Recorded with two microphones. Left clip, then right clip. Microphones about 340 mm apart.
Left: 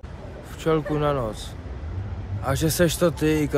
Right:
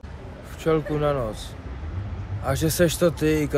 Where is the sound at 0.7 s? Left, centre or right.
Centre.